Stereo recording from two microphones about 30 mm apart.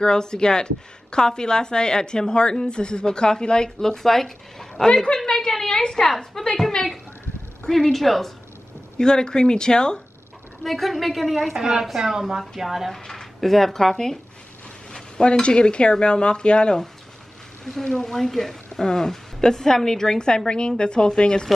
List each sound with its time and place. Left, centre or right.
0.0 s a woman's voice: left
3.8 s speech: centre
5.1 s a woman's voice: left
6.0 s speech: centre
7.9 s a woman's voice: centre
8.9 s a woman's voice: left
10.6 s a woman's voice: centre
11.5 s a woman's voice: right
11.8 s speech: centre
12.9 s speech: centre
14.9 s a sound: left
15.4 s speech: left
17.8 s a woman's voice: centre